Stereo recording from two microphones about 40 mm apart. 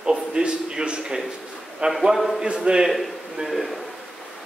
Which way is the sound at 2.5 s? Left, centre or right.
Right.